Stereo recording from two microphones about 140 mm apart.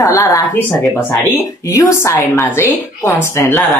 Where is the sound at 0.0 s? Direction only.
20° left (ahead or behind).